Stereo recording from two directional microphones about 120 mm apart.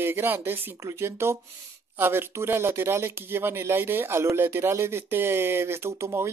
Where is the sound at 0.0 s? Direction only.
20° right (ahead or behind).